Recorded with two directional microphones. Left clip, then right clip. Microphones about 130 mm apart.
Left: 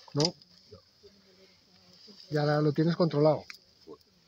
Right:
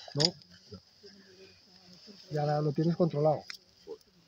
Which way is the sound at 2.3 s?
90° left.